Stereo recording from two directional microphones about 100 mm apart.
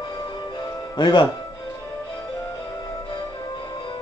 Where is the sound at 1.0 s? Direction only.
50° left (ahead or behind).